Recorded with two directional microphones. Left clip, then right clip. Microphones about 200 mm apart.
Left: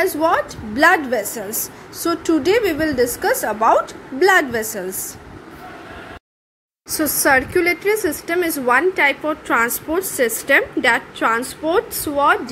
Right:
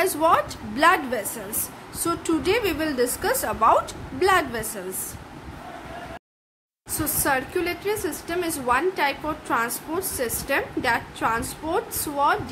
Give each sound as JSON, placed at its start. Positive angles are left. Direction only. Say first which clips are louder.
{"t": 0.0, "sound": "a woman's voice", "louder": "left 3 dB", "side_deg": 5}
{"t": 7.0, "sound": "a woman's voice", "louder": "left 9 dB", "side_deg": 20}